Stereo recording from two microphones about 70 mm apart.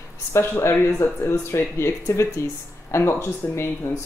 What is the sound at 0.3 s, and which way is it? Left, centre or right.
Speech, left.